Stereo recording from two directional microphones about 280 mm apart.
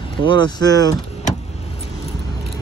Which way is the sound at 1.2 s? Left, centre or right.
Left.